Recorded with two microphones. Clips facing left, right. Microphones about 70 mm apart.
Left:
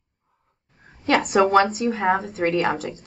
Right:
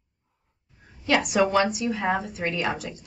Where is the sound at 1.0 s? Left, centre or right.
Left.